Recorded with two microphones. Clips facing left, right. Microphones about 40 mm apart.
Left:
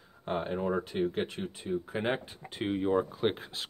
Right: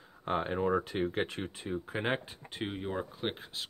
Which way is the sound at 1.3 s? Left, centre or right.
Right.